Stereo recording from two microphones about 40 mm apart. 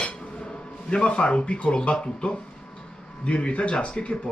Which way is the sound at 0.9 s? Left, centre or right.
Left.